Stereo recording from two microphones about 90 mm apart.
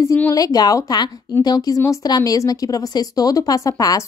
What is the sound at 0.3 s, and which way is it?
A woman's voice, 45° left (ahead or behind).